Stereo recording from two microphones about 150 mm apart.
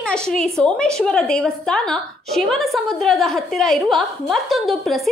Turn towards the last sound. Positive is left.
turn(degrees=0)  # may be behind; listen again after turning